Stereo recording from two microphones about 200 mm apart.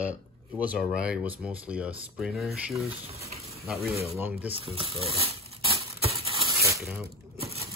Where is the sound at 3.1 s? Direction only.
30° right (ahead or behind).